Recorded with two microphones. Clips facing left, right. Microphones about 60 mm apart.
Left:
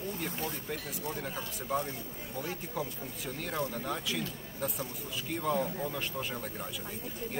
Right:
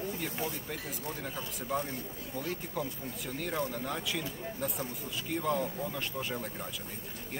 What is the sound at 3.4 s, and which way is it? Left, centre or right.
Speech, centre.